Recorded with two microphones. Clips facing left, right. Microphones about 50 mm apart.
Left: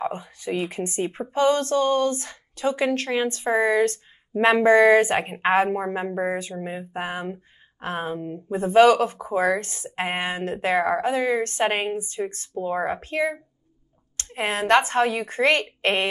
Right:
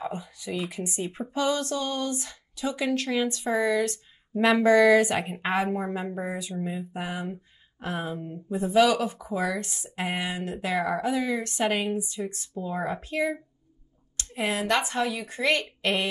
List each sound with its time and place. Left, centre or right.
0.0 s speech: left